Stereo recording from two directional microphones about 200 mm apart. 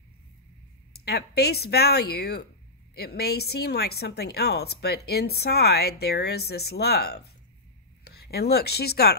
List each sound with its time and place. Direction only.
1.0 s a woman's voice: 55° left (ahead or behind)